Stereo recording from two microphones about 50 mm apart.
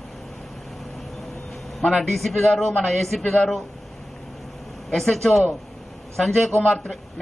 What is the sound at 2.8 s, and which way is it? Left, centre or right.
Speech, centre.